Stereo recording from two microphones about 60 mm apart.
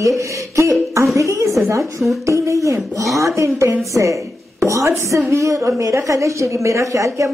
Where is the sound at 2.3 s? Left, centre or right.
Right.